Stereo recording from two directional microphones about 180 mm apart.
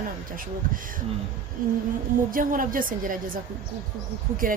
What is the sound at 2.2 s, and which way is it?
Speech, 50° right (ahead or behind).